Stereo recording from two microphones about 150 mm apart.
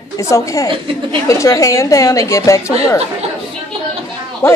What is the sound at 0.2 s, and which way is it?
A woman's voice, 20° left (ahead or behind).